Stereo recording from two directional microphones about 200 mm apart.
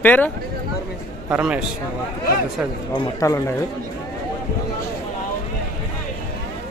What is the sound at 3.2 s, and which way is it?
Speech, 15° left (ahead or behind).